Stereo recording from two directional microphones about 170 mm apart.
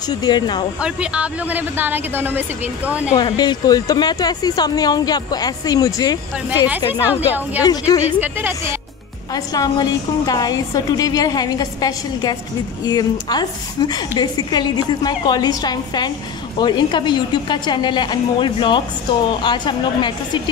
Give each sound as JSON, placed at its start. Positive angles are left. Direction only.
{"t": 0.1, "sound": "speech", "side_deg": 25}
{"t": 0.7, "sound": "speech", "side_deg": -5}
{"t": 3.2, "sound": "speech", "side_deg": 25}
{"t": 6.7, "sound": "speech", "side_deg": -10}
{"t": 7.6, "sound": "speech", "side_deg": 25}
{"t": 8.2, "sound": "speech", "side_deg": -10}
{"t": 9.3, "sound": "speech", "side_deg": 20}